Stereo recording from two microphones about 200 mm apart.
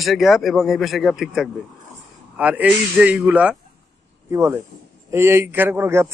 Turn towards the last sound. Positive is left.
turn(degrees=-10)  # may be behind; listen again after turning